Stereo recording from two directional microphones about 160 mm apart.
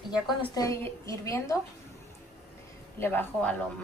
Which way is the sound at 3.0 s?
10° left (ahead or behind).